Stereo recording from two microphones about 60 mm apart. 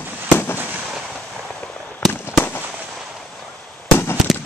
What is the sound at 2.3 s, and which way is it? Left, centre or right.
Fireworks, left.